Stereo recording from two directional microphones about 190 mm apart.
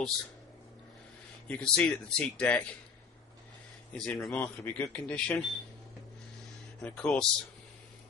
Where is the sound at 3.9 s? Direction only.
5° left (ahead or behind).